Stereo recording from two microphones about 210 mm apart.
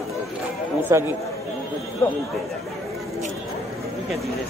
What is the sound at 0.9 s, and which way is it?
Speech, 15° right (ahead or behind).